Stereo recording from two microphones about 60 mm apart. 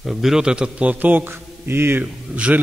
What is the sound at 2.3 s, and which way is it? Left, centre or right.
Speech, centre.